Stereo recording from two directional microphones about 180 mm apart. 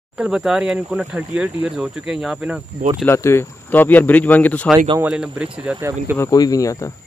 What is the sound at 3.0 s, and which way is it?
Speech, 15° left (ahead or behind).